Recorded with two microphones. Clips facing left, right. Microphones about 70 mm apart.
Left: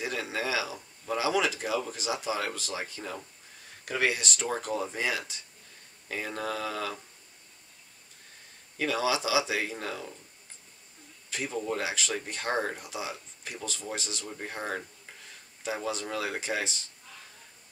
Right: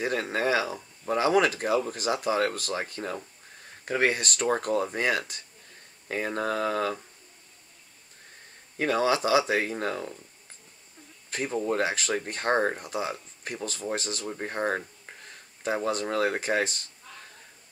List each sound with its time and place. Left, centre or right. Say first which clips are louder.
0.0 s speech: right 5 dB; right
8.7 s speech: right 4 dB; right
11.2 s speech: right 4 dB; right